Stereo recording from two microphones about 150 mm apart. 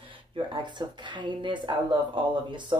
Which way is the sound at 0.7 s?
30° right (ahead or behind).